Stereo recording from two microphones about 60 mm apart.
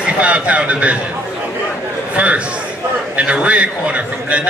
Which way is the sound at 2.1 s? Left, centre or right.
Right.